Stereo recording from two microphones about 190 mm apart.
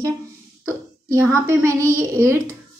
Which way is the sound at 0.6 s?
15° right (ahead or behind).